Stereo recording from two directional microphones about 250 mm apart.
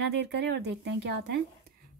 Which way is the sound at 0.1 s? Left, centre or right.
Right.